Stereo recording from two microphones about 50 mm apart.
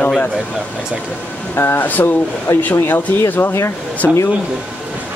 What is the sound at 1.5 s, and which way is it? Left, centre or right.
Speech, left.